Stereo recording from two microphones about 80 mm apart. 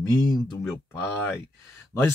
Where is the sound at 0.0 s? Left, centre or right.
Left.